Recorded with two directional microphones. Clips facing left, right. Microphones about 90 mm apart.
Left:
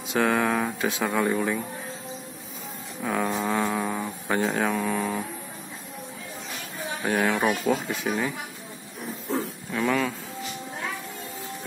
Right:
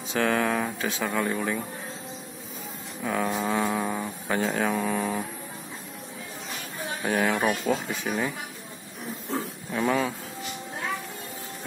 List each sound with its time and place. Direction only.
0.1 s speech: 10° left (ahead or behind)
3.0 s speech: centre (ahead or behind)
7.1 s speech: centre (ahead or behind)
9.7 s speech: 15° right (ahead or behind)